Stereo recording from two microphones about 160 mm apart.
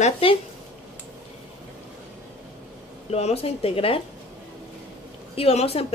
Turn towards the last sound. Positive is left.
turn(degrees=40)  # may be behind; listen again after turning